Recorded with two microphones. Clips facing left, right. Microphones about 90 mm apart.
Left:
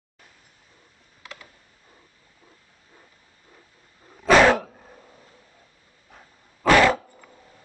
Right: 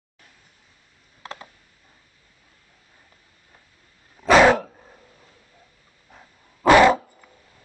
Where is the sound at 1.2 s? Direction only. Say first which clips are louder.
Right 6 dB; 35° right (ahead or behind).